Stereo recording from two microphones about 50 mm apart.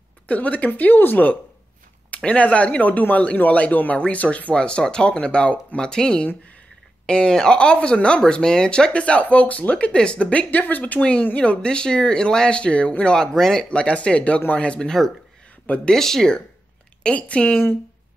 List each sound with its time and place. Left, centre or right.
0.3 s speech: left
10.5 s speech: left
11.0 s speech: left
13.3 s speech: centre
13.7 s speech: left
15.9 s speech: centre